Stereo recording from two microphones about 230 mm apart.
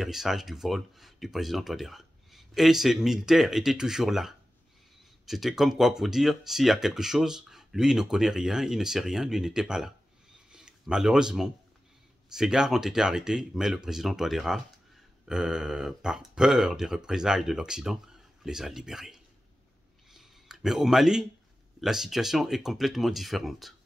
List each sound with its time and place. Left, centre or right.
0.0 s speech: centre
20.1 s a sound: centre
21.8 s speech: centre